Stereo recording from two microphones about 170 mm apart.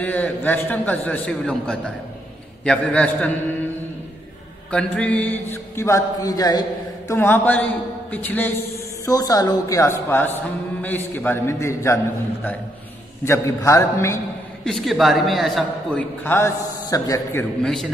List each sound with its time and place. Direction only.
0.0 s speech: 10° left (ahead or behind)
4.6 s speech: 5° left (ahead or behind)
9.0 s speech: 20° left (ahead or behind)
13.2 s speech: 15° left (ahead or behind)
14.6 s a man's voice: centre (ahead or behind); by 17.5 s 15° left (ahead or behind)
17.6 s a man's voice: centre (ahead or behind)